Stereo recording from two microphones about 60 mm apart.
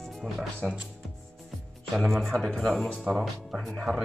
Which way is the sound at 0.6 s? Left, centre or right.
Centre.